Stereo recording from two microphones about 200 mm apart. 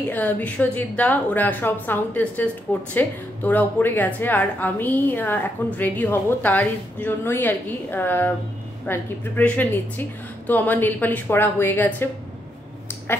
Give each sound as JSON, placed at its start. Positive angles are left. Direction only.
{"t": 0.1, "sound": "a woman's voice", "side_deg": 10}